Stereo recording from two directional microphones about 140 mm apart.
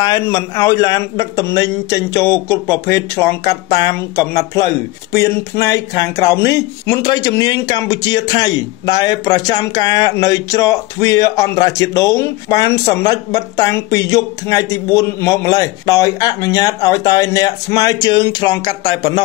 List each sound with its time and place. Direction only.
0.0 s speech: 25° left (ahead or behind)